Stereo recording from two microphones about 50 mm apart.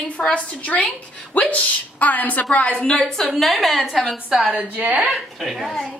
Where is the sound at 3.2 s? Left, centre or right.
Centre.